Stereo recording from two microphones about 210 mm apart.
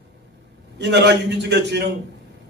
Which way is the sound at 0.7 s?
55° right (ahead or behind).